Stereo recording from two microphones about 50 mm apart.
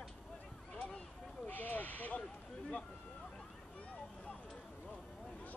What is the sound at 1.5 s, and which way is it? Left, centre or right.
Speech, left.